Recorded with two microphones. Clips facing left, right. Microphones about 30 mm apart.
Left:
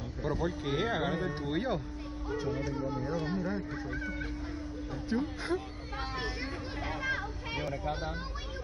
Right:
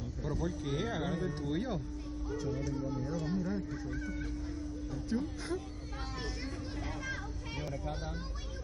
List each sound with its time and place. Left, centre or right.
0.2 s speech: left
6.1 s a sound: left
7.7 s speech: left